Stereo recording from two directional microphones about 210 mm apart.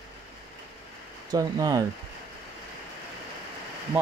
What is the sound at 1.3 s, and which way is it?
Speech, 20° right (ahead or behind).